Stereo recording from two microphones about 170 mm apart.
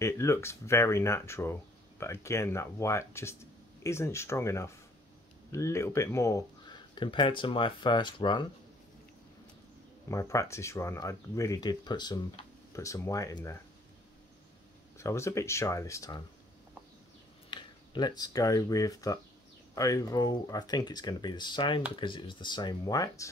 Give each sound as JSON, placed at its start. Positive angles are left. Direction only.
{"t": 0.0, "sound": "speech", "side_deg": 15}
{"t": 7.0, "sound": "speech", "side_deg": 30}
{"t": 10.0, "sound": "speech", "side_deg": 20}
{"t": 15.0, "sound": "speech", "side_deg": 15}
{"t": 17.5, "sound": "speech", "side_deg": 25}